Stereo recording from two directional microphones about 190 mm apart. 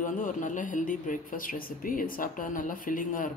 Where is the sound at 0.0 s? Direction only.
45° left (ahead or behind).